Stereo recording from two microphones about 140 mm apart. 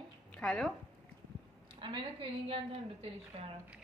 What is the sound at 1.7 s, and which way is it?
A woman's voice, 40° right (ahead or behind).